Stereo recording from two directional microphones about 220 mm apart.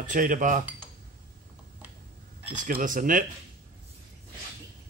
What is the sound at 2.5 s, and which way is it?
Speech, 40° right (ahead or behind).